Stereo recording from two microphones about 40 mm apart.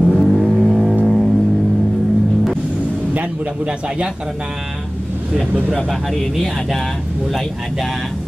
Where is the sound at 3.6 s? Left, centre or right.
Right.